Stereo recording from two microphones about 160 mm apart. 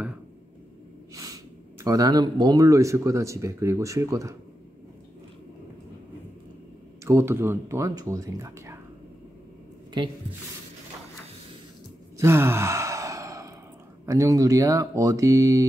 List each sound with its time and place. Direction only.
1.1 s speech: 20° right (ahead or behind)
7.1 s speech: 15° right (ahead or behind)
9.9 s speech: 30° right (ahead or behind)
12.2 s sigh: 15° right (ahead or behind)
14.0 s speech: 20° right (ahead or behind)